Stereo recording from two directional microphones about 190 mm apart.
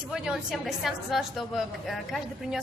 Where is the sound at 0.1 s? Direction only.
5° right (ahead or behind).